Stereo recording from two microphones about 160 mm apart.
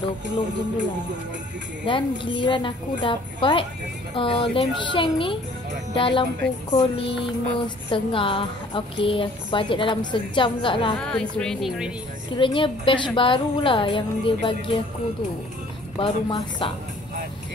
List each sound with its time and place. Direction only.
1.9 s speech: 30° left (ahead or behind)
11.0 s a woman's voice: 5° left (ahead or behind)
12.4 s speech: 30° left (ahead or behind)
16.0 s a woman's voice: 30° left (ahead or behind)